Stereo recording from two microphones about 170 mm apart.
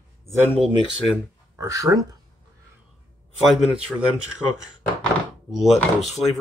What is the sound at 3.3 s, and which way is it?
Speech, centre (ahead or behind).